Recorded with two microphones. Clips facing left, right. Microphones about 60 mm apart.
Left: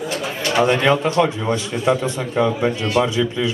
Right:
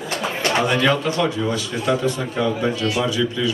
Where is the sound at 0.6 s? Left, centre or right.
Left.